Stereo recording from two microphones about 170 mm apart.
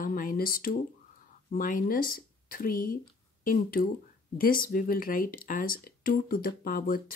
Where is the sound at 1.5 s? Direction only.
55° left (ahead or behind).